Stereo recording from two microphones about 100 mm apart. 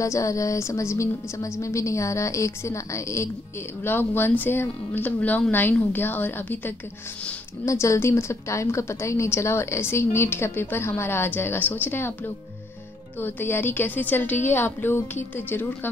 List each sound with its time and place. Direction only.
0.0 s a woman's voice: 30° left (ahead or behind)
13.2 s a woman's voice: 20° left (ahead or behind)